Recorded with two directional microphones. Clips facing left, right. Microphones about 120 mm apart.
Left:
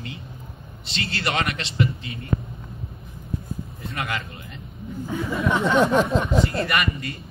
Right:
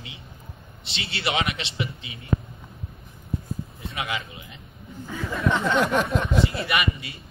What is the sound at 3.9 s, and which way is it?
Speech, 5° right (ahead or behind).